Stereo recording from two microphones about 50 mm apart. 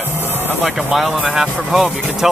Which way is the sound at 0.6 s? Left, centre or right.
Centre.